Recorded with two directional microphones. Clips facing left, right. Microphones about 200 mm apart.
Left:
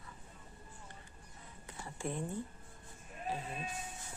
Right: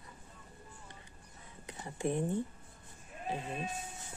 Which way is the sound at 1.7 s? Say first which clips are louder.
Right 6 dB; 20° right (ahead or behind).